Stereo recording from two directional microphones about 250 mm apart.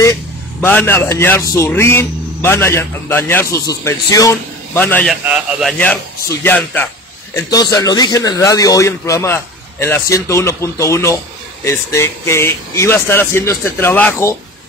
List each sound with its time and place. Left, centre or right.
0.0 s a man's voice: centre